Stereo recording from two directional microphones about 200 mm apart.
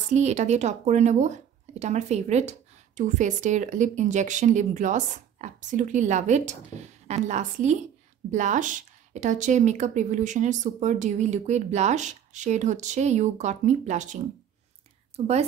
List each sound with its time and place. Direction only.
0.1 s speech: 35° right (ahead or behind)